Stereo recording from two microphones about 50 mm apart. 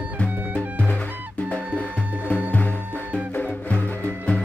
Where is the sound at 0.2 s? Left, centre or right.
Left.